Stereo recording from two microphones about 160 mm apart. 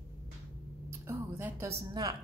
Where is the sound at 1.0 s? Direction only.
15° right (ahead or behind).